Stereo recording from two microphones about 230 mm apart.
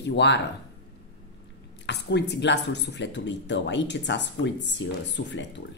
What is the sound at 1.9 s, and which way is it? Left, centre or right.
Speech, left.